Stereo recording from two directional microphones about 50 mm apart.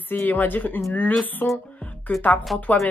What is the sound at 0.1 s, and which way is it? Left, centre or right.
Speech, left.